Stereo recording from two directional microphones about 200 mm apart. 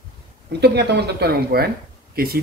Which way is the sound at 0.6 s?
55° right (ahead or behind).